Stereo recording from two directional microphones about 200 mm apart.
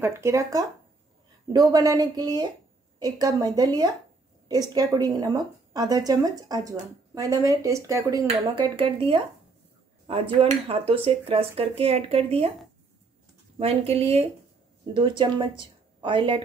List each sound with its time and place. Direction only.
0.0 s a woman's voice: 15° right (ahead or behind)
8.5 s speech: 25° right (ahead or behind)
13.6 s speech: 30° right (ahead or behind)